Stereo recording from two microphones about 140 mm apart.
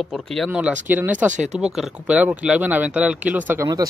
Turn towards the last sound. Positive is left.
turn(degrees=-10)  # may be behind; listen again after turning